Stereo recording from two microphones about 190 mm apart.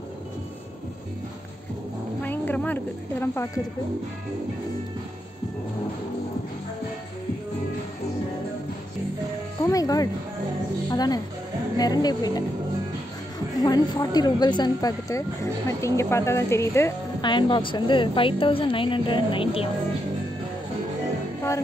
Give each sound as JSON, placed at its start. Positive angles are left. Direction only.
{"t": 2.2, "sound": "speech", "side_deg": 10}
{"t": 9.6, "sound": "a woman's voice", "side_deg": 20}
{"t": 13.6, "sound": "a woman's voice", "side_deg": 20}
{"t": 17.2, "sound": "a woman's voice", "side_deg": 25}